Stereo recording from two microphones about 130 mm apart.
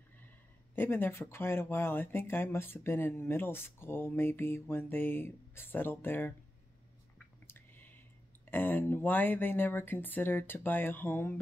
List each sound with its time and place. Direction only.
0.7 s speech: 15° left (ahead or behind)
7.4 s a sound: 15° left (ahead or behind)
8.5 s speech: 15° left (ahead or behind)